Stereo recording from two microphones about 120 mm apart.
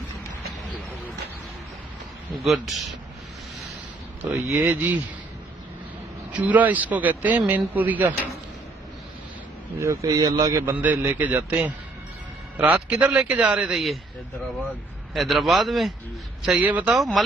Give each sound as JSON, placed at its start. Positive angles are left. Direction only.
{"t": 2.3, "sound": "a man's voice", "side_deg": 0}
{"t": 4.5, "sound": "speech", "side_deg": -15}
{"t": 6.3, "sound": "speech", "side_deg": -15}
{"t": 9.8, "sound": "speech", "side_deg": -25}
{"t": 10.6, "sound": "speech", "side_deg": -15}
{"t": 15.1, "sound": "a man's voice", "side_deg": 0}
{"t": 16.4, "sound": "speech", "side_deg": -15}
{"t": 16.9, "sound": "a man's voice", "side_deg": 0}